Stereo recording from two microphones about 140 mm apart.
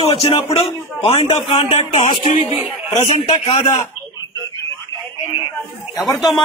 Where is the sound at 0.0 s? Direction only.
40° left (ahead or behind).